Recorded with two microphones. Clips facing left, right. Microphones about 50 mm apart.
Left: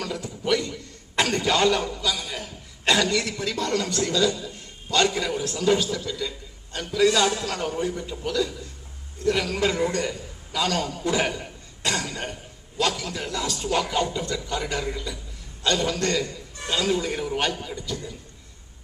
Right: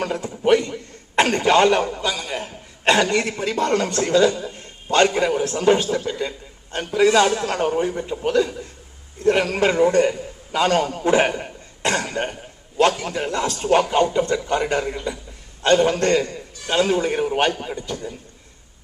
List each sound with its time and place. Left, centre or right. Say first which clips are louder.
0.0 s a man's voice: right 8 dB; right